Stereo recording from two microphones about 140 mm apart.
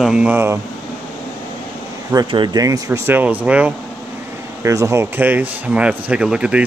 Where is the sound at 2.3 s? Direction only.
30° right (ahead or behind); by 3.7 s 10° right (ahead or behind).